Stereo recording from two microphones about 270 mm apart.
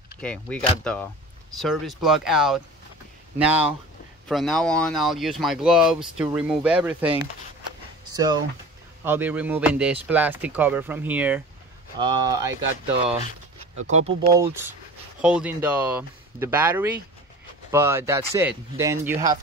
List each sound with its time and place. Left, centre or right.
0.2 s speech: centre
13.8 s speech: right
14.4 s speech: centre